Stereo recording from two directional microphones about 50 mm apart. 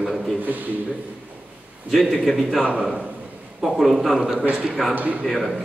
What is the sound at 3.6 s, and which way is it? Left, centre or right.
A man's voice, centre.